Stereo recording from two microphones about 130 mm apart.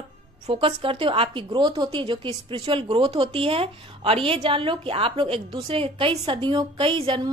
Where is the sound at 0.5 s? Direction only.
45° right (ahead or behind).